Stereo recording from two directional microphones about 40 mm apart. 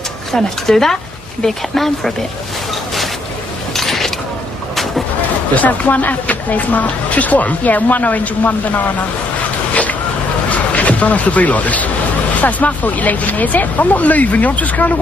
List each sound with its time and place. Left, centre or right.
0.3 s speech: centre
3.7 s vehicle: centre
5.5 s speech: left
10.5 s a sound: left
12.4 s speech: left